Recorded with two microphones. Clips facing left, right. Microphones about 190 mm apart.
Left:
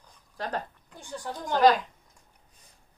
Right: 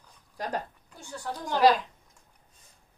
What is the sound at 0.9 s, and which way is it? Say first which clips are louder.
Speech: even; 15° left (ahead or behind).